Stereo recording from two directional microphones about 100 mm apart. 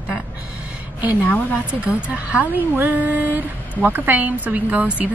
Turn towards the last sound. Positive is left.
turn(degrees=-15)  # may be behind; listen again after turning